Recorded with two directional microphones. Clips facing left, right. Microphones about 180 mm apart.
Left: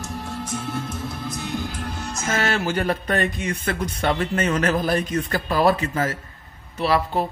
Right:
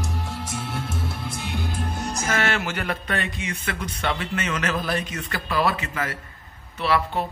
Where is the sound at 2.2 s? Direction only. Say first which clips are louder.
Left 3 dB; 30° left (ahead or behind).